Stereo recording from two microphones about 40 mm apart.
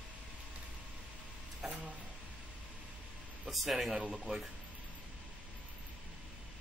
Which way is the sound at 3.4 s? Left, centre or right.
Centre.